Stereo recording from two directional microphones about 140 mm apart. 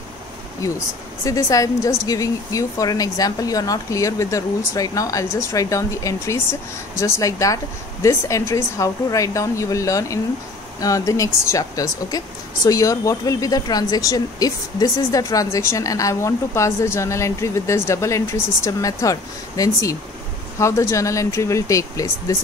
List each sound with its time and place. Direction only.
1.2 s speech: 25° left (ahead or behind)